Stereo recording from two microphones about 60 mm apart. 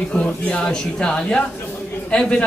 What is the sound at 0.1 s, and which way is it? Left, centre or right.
Speech, centre.